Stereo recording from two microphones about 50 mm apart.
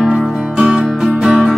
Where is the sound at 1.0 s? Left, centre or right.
Centre.